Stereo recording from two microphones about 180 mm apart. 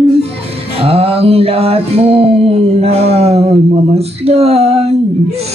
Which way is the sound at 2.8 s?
35° right (ahead or behind).